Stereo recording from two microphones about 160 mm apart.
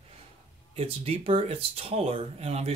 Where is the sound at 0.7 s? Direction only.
40° right (ahead or behind).